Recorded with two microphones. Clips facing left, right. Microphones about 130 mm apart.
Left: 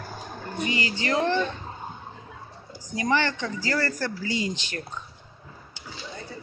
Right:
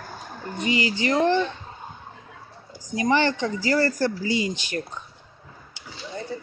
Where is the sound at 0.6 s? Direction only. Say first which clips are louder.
Right 5 dB; 20° right (ahead or behind).